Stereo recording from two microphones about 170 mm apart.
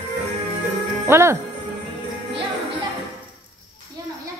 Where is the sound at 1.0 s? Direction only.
15° right (ahead or behind).